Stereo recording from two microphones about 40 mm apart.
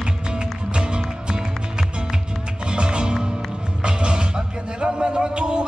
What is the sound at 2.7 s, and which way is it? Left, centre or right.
Music, right.